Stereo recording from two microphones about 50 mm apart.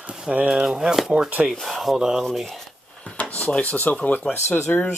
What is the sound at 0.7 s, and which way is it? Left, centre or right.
Speech, centre.